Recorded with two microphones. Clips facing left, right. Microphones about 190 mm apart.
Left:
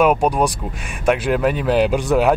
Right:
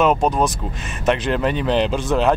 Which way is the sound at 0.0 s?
10° left (ahead or behind).